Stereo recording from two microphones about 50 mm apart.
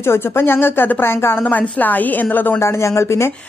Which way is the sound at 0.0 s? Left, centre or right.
Left.